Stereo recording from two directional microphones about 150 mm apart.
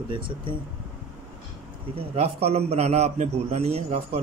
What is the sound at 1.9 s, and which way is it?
A man's voice, 40° right (ahead or behind).